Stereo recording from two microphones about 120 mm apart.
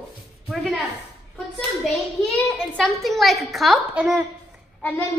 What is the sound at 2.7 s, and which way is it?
A child's voice, 5° left (ahead or behind).